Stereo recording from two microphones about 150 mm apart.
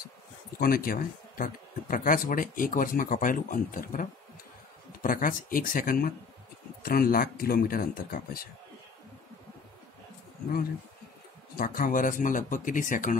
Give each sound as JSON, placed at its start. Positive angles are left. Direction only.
{"t": 0.6, "sound": "speech", "side_deg": 75}
{"t": 11.5, "sound": "speech", "side_deg": 70}